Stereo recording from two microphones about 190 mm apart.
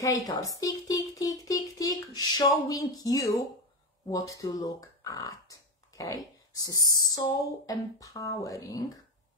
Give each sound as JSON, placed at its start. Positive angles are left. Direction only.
{"t": 0.0, "sound": "music", "side_deg": 15}
{"t": 4.3, "sound": "speech", "side_deg": 15}